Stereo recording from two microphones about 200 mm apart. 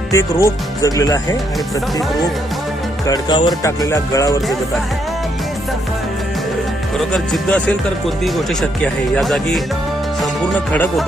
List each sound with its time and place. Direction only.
0.1 s speech: 15° left (ahead or behind)
3.1 s speech: 20° left (ahead or behind)
7.0 s speech: 5° left (ahead or behind)